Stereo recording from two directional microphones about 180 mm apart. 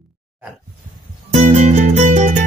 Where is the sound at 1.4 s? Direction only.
40° right (ahead or behind).